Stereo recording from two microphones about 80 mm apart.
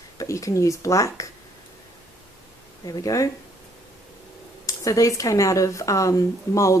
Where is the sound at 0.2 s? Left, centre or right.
Left.